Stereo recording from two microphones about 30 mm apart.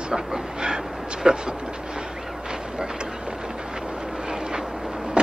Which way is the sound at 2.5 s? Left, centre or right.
Right.